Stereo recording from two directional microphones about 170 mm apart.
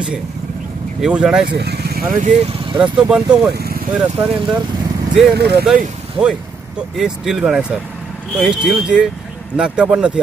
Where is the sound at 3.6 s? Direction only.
65° right (ahead or behind).